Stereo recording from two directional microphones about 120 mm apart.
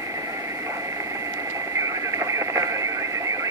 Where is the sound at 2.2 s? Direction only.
25° right (ahead or behind).